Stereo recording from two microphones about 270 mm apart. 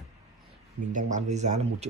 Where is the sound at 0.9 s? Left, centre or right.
Right.